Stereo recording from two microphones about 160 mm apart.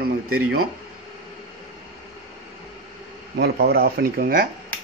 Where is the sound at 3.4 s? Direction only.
75° right (ahead or behind).